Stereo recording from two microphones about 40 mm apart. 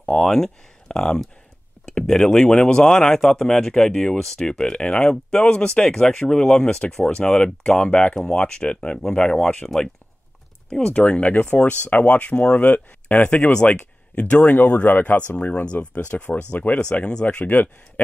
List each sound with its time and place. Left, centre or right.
0.1 s speech: centre
5.4 s speech: left
5.8 s speech: centre
6.4 s speech: left
10.9 s speech: left
13.7 s speech: left
17.5 s speech: left